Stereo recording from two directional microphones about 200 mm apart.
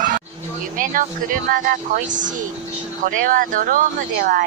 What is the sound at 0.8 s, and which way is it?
Speech, 45° right (ahead or behind).